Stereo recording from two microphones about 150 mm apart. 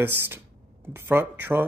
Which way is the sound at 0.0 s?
15° right (ahead or behind).